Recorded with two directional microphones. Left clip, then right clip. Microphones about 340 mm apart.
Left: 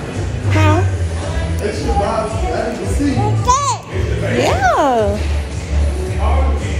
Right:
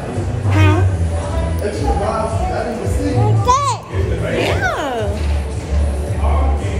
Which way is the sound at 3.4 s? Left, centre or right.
Centre.